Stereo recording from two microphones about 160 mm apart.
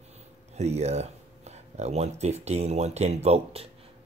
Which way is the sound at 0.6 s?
45° right (ahead or behind).